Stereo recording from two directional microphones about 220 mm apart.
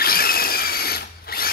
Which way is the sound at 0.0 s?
45° left (ahead or behind).